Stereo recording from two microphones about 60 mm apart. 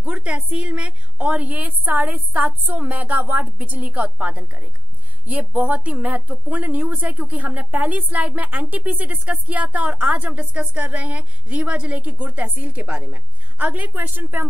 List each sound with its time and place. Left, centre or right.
0.0 s a woman's voice: right